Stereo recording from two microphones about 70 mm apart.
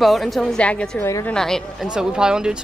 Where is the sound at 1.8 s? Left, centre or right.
Centre.